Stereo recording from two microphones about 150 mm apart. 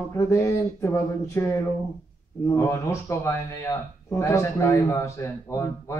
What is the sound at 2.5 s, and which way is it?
Speech, 20° left (ahead or behind).